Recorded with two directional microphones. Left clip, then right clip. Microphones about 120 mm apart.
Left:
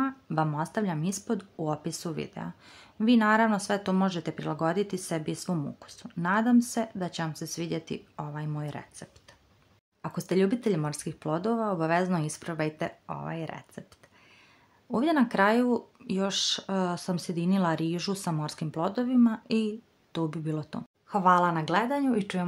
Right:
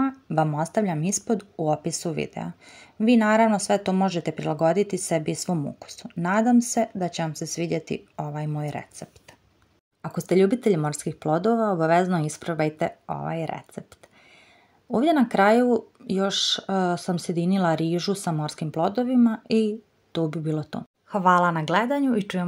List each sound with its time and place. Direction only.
0.3 s speech: 20° right (ahead or behind)
0.6 s speech: 35° right (ahead or behind)
10.0 s speech: 25° right (ahead or behind)
14.9 s speech: 20° right (ahead or behind)